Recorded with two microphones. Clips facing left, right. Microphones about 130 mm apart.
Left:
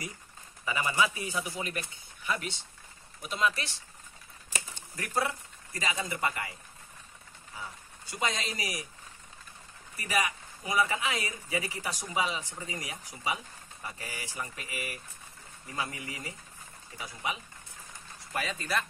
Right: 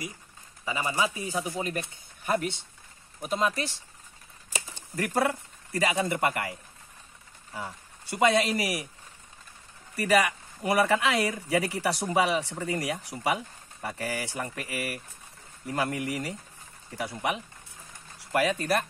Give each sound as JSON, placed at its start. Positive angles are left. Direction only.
{"t": 0.7, "sound": "speech", "side_deg": -25}
{"t": 2.2, "sound": "speech", "side_deg": -50}
{"t": 4.9, "sound": "speech", "side_deg": -60}
{"t": 7.5, "sound": "speech", "side_deg": -65}
{"t": 9.9, "sound": "speech", "side_deg": -70}
{"t": 16.9, "sound": "speech", "side_deg": -70}